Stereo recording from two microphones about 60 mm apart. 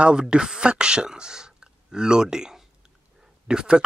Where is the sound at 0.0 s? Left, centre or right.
Centre.